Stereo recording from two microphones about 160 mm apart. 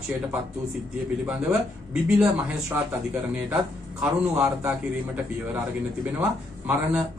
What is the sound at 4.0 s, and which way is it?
Speech, 15° right (ahead or behind).